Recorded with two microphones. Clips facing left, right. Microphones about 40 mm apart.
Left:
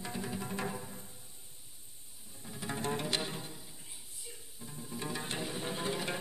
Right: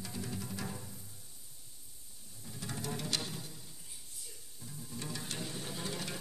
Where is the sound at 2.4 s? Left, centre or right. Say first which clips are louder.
Left 5 dB; left.